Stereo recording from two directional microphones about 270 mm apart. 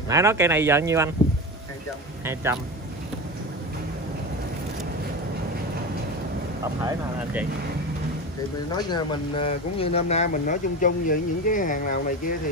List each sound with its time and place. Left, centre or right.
0.1 s speech: centre
2.2 s speech: centre
8.7 s speech: centre